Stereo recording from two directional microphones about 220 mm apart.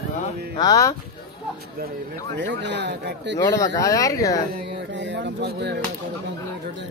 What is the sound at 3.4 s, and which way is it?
Speech, 15° left (ahead or behind).